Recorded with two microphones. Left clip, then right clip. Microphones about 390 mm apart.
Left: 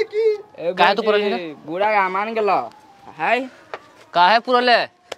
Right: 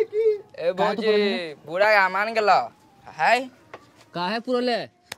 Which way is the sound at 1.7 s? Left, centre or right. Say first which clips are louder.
Even; right.